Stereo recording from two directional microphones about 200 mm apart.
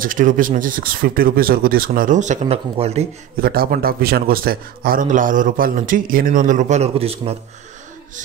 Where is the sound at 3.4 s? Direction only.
50° right (ahead or behind).